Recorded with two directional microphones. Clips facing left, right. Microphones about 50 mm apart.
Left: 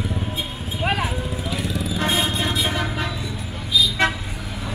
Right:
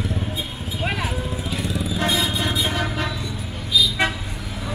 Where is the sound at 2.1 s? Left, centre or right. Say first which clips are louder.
Left 2 dB; left.